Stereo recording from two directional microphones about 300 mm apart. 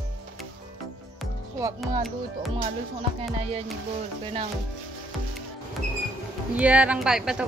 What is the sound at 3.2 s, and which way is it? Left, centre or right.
Music, centre.